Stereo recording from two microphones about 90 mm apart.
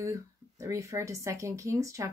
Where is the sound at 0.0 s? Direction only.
35° right (ahead or behind).